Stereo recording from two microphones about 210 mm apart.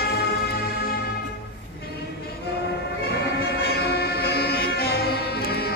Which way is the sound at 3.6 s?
50° left (ahead or behind).